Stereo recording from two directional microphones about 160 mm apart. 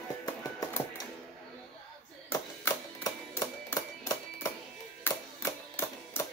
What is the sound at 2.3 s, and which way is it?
Music, 20° left (ahead or behind).